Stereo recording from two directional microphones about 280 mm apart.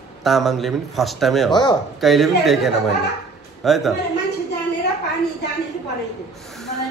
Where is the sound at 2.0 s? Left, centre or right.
Centre.